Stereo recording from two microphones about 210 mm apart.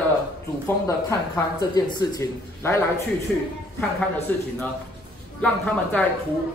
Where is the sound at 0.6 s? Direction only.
15° left (ahead or behind).